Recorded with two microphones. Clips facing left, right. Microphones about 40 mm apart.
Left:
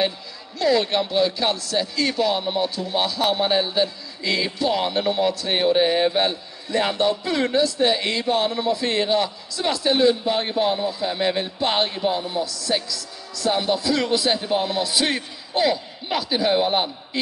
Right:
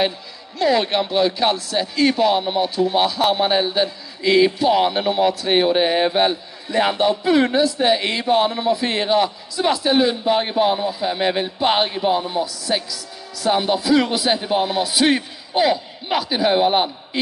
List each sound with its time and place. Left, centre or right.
0.6 s speech: right